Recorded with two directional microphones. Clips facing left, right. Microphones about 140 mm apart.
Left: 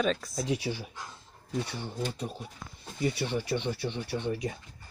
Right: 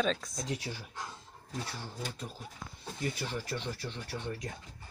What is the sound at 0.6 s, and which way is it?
Speech, 85° left.